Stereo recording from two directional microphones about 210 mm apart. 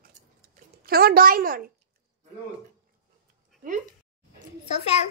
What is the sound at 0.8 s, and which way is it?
Speech, 45° right (ahead or behind).